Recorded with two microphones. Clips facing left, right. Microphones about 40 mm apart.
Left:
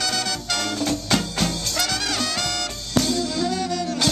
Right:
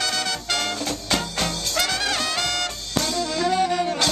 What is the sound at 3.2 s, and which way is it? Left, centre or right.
Saxophone, right.